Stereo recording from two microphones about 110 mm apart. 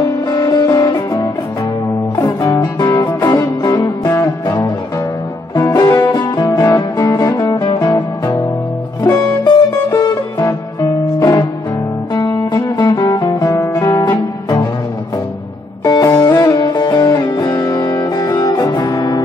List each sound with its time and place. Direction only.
0.3 s music: 35° left (ahead or behind)
12.1 s guitar: 35° left (ahead or behind)
15.8 s music: 35° left (ahead or behind)